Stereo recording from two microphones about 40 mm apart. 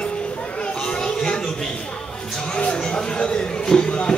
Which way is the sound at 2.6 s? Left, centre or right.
Left.